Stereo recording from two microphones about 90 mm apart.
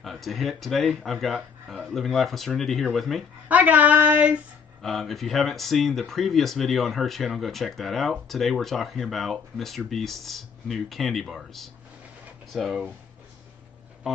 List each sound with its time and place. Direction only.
0.0 s speech: centre (ahead or behind)
3.4 s speech: 15° right (ahead or behind)
4.8 s speech: centre (ahead or behind)